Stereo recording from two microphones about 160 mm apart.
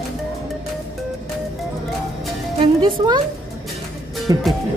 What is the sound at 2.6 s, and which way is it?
Speech, 30° right (ahead or behind).